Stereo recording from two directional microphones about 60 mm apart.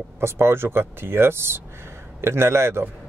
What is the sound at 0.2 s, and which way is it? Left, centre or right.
Speech, right.